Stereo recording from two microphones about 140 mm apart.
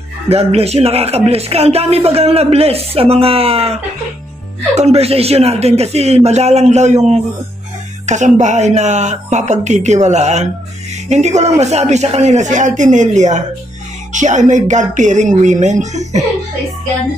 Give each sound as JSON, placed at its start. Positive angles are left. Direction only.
{"t": 0.3, "sound": "speech", "side_deg": -45}